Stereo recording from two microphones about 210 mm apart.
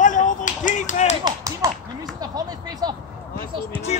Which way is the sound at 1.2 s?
15° right (ahead or behind).